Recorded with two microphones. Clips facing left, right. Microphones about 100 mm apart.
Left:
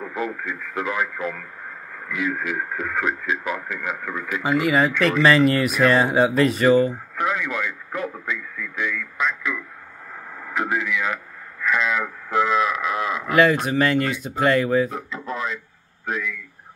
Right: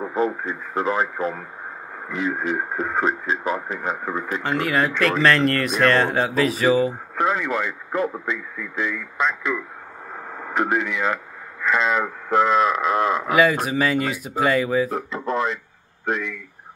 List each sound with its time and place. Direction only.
0.0 s speech: 30° right (ahead or behind)
4.4 s speech: 5° left (ahead or behind)
7.2 s speech: 30° right (ahead or behind)
10.5 s speech: 45° right (ahead or behind)
12.3 s a sound: 45° right (ahead or behind)
13.3 s speech: 5° right (ahead or behind)
14.9 s speech: 50° right (ahead or behind)
16.1 s a sound: 50° right (ahead or behind)